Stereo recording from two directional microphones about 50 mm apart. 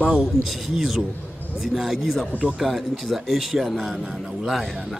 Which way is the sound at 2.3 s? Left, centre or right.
Right.